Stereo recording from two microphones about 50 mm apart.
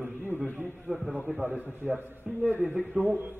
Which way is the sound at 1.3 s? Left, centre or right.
Centre.